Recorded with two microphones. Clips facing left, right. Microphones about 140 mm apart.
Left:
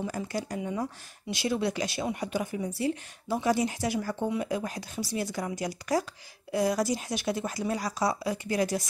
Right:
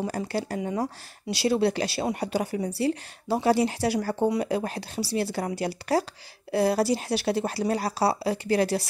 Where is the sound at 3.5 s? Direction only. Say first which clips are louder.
Right 4 dB; 70° right (ahead or behind).